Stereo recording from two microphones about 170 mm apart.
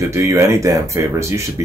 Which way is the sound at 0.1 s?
15° right (ahead or behind).